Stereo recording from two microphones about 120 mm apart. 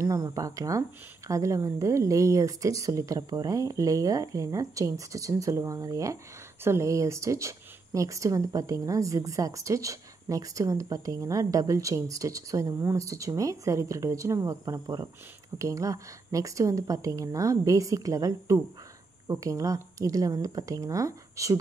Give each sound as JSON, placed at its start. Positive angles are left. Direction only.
{"t": 0.0, "sound": "speech", "side_deg": -30}